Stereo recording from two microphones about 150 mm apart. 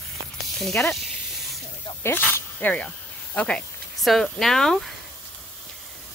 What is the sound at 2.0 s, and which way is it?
Speech, 15° left (ahead or behind).